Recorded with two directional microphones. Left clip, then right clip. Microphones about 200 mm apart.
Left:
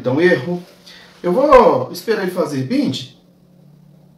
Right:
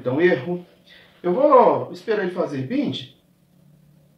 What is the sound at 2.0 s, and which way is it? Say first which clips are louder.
Speech: left 4 dB; 5° left (ahead or behind).